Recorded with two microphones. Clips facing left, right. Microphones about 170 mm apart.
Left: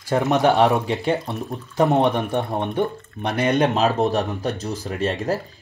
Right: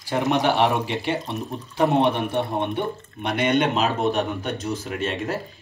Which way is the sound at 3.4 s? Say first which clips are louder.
Left 2 dB; 40° left (ahead or behind).